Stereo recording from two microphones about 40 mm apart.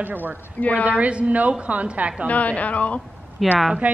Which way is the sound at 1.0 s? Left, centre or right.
Right.